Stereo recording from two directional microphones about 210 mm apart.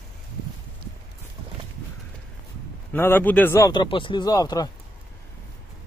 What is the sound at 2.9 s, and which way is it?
Speech, 10° left (ahead or behind).